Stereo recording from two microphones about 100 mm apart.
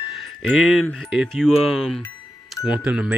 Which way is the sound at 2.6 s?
10° right (ahead or behind).